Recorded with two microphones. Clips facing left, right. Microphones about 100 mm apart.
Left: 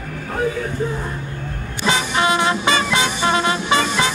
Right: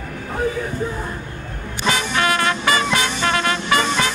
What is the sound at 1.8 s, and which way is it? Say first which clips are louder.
Music: left 1 dB; 25° left (ahead or behind).